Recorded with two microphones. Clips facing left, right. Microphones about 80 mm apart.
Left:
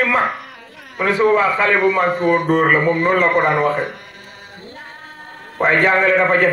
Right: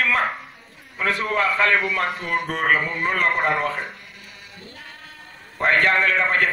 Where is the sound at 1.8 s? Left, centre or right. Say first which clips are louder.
Left 10 dB; left.